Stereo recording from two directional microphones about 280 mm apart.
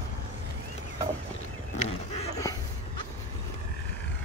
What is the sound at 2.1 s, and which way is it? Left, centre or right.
Dog, centre.